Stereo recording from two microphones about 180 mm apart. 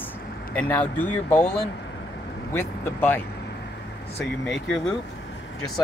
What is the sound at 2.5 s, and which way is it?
Speech, 10° left (ahead or behind).